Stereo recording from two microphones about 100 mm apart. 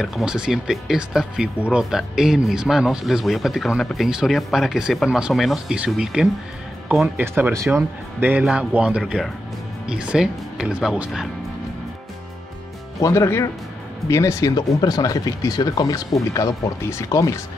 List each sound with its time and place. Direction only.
0.0 s speech: 5° right (ahead or behind)
7.2 s speech: 20° right (ahead or behind)
7.5 s speech: 30° right (ahead or behind); by 9.0 s 10° right (ahead or behind)
9.0 s speech: centre (ahead or behind)
13.0 s speech: 30° left (ahead or behind)